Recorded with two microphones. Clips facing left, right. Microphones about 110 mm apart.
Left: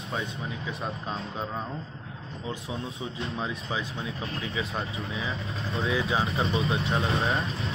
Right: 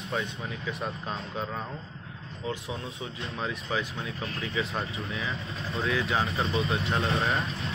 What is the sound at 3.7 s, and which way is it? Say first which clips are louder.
Speech: right 3 dB; 15° left (ahead or behind).